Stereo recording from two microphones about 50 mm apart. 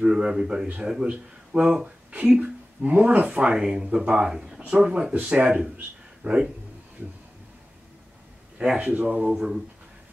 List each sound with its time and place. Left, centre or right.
0.0 s speech: centre
6.2 s speech: right
8.5 s speech: centre
9.3 s speech: centre